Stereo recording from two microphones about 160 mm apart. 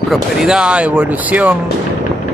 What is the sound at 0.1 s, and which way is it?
Speech, 5° right (ahead or behind).